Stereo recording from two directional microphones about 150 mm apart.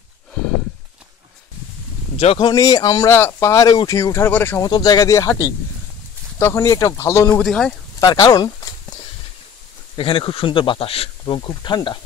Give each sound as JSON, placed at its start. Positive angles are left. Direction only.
{"t": 2.1, "sound": "speech", "side_deg": 35}
{"t": 4.6, "sound": "speech", "side_deg": 25}
{"t": 7.4, "sound": "speech", "side_deg": 5}
{"t": 8.0, "sound": "speech", "side_deg": 20}
{"t": 9.9, "sound": "speech", "side_deg": 35}